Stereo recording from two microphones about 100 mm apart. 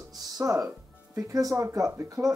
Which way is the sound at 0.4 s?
35° right (ahead or behind).